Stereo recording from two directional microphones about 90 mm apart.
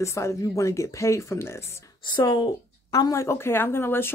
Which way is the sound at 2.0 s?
50° left (ahead or behind).